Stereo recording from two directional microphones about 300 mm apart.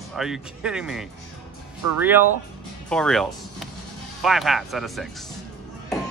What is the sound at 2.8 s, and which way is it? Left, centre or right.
Music, centre.